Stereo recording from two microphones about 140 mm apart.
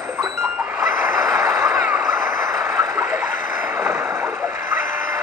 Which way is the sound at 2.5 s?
20° right (ahead or behind).